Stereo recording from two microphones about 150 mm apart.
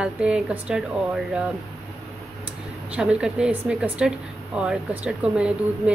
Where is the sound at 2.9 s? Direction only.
5° right (ahead or behind).